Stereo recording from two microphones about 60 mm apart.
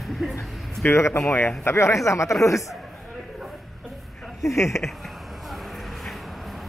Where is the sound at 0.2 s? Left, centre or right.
Centre.